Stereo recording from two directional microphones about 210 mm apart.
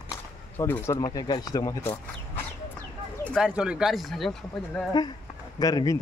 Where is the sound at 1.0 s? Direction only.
20° left (ahead or behind).